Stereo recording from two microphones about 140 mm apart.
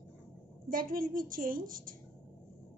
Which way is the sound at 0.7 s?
90° right.